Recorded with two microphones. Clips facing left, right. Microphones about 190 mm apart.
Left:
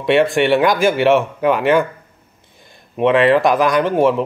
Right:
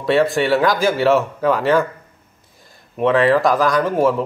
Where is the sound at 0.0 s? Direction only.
20° left (ahead or behind).